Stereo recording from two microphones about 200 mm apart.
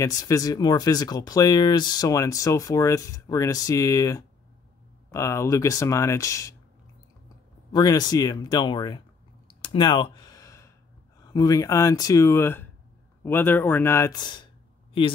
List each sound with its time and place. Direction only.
0.0 s speech: 15° left (ahead or behind)
7.7 s speech: 20° left (ahead or behind)
9.6 s a sound: 25° left (ahead or behind)
11.1 s speech: 20° left (ahead or behind)